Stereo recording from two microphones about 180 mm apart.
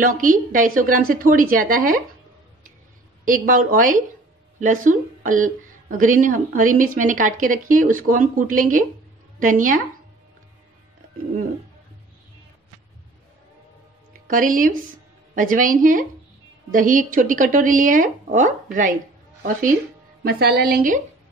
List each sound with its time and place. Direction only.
0.0 s a woman's voice: 50° right (ahead or behind)
3.3 s a woman's voice: 50° right (ahead or behind)
14.2 s a woman's voice: 50° right (ahead or behind)
20.2 s a woman's voice: 60° right (ahead or behind)